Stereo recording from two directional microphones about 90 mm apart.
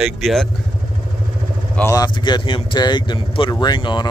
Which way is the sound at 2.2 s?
55° left (ahead or behind).